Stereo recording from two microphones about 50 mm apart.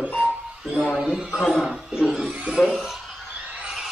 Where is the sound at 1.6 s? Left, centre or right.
Centre.